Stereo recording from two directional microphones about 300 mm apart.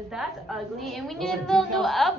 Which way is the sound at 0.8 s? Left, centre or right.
Centre.